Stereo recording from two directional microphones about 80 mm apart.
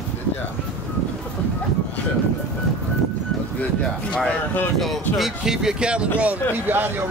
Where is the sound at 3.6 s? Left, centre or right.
Centre.